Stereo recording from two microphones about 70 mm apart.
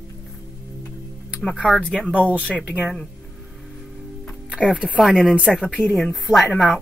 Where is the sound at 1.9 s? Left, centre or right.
Centre.